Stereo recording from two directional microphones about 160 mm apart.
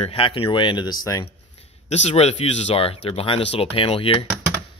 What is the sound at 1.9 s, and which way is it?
Speech, 45° left (ahead or behind).